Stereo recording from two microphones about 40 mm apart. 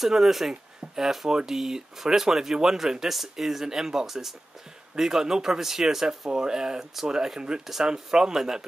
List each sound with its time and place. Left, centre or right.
0.0 s speech: centre